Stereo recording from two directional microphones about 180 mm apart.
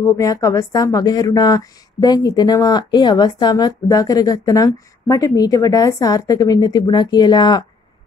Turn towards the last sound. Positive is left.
turn(degrees=25)  # may be behind; listen again after turning